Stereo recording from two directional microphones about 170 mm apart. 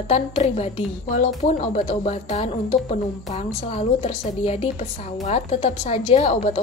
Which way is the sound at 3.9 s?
40° left (ahead or behind).